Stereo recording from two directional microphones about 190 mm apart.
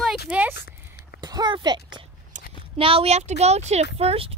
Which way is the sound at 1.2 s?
20° right (ahead or behind).